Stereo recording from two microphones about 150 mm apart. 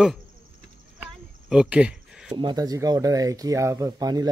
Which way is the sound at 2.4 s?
30° right (ahead or behind).